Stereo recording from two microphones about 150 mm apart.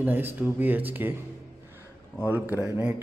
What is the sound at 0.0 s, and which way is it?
Speech, 15° right (ahead or behind).